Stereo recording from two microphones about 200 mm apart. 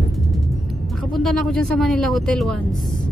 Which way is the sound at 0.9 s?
Centre (ahead or behind).